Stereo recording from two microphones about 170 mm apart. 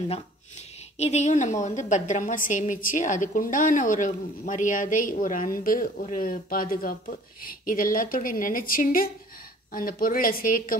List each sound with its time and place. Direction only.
0.9 s a woman's voice: 40° left (ahead or behind); by 10.8 s 55° left (ahead or behind)